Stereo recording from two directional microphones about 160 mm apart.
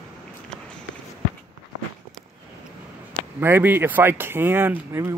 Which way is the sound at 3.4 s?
15° right (ahead or behind).